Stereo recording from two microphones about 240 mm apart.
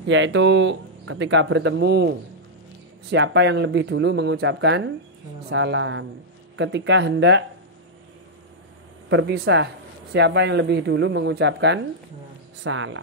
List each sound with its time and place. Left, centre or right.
0.1 s speech: right
9.1 s speech: right